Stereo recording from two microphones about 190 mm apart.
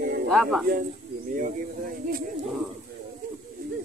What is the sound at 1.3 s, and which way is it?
Speech, 45° right (ahead or behind).